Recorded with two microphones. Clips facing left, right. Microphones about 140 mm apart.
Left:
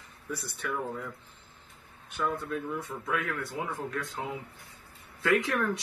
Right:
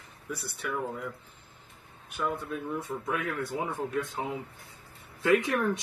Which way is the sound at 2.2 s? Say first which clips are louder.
Left 1 dB; 15° right (ahead or behind).